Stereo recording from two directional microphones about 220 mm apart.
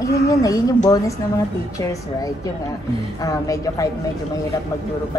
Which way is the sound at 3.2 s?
15° left (ahead or behind).